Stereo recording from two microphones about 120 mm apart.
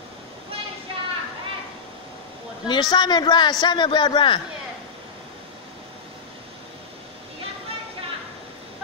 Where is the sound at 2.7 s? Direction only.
35° left (ahead or behind).